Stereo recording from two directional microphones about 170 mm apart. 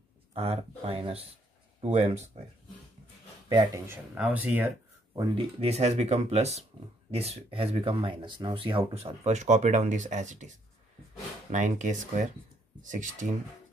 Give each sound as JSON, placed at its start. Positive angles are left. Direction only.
{"t": 0.3, "sound": "speech", "side_deg": -35}
{"t": 3.4, "sound": "speech", "side_deg": -20}
{"t": 5.6, "sound": "speech", "side_deg": -40}
{"t": 11.5, "sound": "speech", "side_deg": -45}